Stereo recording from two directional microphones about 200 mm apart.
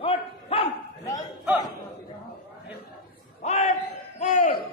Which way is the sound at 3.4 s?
35° left (ahead or behind).